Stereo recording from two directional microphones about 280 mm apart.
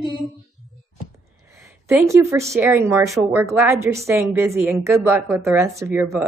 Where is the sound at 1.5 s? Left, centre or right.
Centre.